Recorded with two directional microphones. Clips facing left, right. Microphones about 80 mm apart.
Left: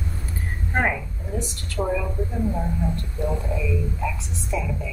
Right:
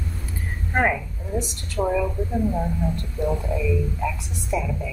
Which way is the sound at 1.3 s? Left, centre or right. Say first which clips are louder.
Right 3 dB; centre.